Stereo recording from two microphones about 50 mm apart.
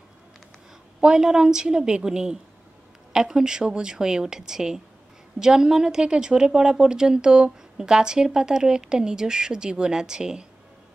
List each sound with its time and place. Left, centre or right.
1.0 s a woman's voice: centre